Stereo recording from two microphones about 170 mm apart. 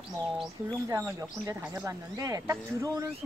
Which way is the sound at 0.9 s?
15° right (ahead or behind).